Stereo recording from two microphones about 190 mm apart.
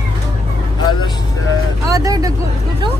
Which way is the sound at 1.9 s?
20° right (ahead or behind).